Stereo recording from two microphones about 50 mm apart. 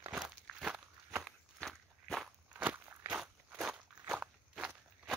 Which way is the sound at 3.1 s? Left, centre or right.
Centre.